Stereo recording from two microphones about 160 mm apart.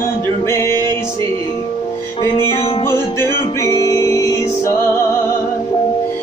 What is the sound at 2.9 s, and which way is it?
Music, 20° left (ahead or behind).